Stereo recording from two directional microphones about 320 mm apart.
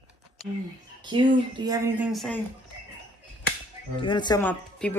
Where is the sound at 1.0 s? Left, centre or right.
Centre.